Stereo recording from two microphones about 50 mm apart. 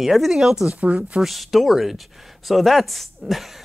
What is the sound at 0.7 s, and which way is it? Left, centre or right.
Speech, right.